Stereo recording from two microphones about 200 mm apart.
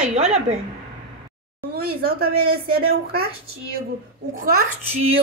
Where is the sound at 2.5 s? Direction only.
50° right (ahead or behind).